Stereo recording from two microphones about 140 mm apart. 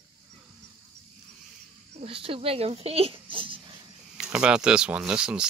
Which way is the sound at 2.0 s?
40° right (ahead or behind).